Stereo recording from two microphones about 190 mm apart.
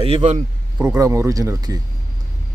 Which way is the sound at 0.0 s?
35° right (ahead or behind).